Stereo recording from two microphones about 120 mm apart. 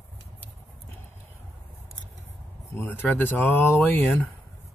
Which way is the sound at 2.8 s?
15° left (ahead or behind).